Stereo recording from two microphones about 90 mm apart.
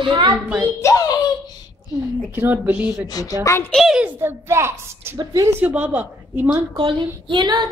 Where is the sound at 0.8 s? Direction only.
40° left (ahead or behind).